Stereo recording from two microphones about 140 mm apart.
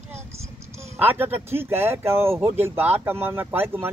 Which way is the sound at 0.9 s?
15° right (ahead or behind).